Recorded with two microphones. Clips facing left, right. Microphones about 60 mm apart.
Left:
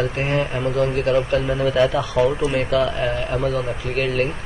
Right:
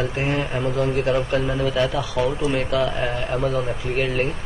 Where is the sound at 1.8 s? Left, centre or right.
Centre.